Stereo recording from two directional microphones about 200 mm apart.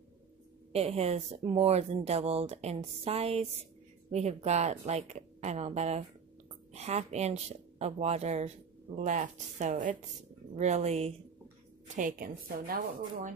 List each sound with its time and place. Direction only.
0.7 s a woman's voice: 30° right (ahead or behind)
11.9 s a woman's voice: 40° right (ahead or behind)